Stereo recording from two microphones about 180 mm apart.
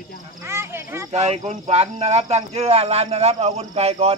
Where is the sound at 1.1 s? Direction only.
35° right (ahead or behind).